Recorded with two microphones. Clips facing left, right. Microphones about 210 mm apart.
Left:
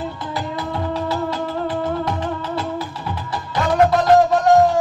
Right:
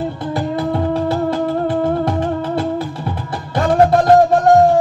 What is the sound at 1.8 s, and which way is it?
Music, 50° right (ahead or behind).